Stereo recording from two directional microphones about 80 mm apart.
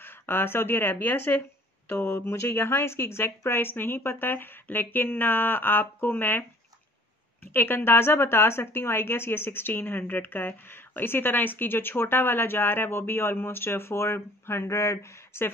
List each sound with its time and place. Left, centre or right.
0.0 s a woman's voice: left
7.5 s a woman's voice: left